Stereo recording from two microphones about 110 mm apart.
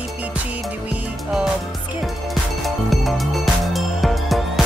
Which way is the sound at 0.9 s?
10° right (ahead or behind).